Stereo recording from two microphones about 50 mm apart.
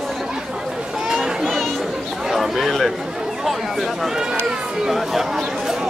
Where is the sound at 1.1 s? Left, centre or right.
Centre.